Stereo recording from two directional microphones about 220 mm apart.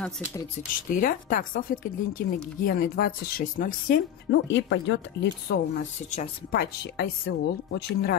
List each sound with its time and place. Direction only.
0.6 s a woman's voice: 40° left (ahead or behind)
4.3 s speech: 55° left (ahead or behind)